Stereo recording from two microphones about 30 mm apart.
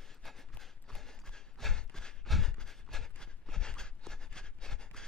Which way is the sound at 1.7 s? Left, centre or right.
Left.